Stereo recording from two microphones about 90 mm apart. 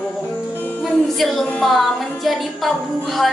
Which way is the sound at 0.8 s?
Centre (ahead or behind).